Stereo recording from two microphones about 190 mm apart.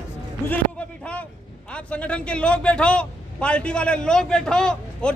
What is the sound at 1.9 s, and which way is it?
A man's voice, 5° left (ahead or behind).